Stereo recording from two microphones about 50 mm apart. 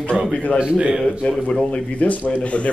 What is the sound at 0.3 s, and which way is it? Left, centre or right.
Speech, left.